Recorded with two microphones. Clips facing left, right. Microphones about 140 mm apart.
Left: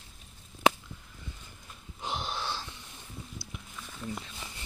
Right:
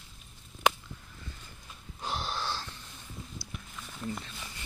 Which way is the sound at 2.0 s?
20° left (ahead or behind).